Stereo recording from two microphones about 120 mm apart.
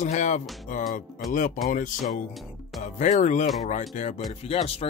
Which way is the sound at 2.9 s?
90° left.